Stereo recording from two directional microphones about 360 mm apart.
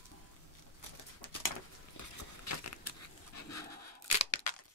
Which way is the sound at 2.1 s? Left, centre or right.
Left.